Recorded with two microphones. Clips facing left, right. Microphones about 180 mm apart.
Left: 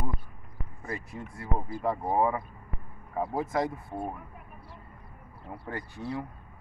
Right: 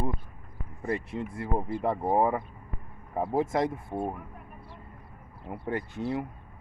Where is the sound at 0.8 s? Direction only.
25° right (ahead or behind).